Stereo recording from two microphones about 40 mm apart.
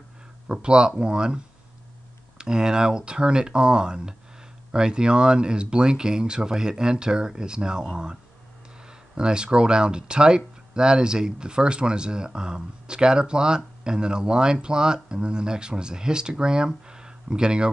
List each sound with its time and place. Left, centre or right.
0.5 s speech: right